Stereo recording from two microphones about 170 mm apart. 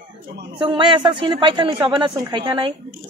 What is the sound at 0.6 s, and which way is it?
Speech, 30° right (ahead or behind).